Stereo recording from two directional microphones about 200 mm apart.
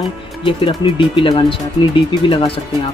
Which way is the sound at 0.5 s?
25° left (ahead or behind).